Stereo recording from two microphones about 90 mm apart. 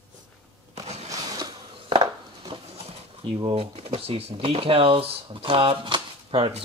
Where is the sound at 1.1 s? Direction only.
45° right (ahead or behind).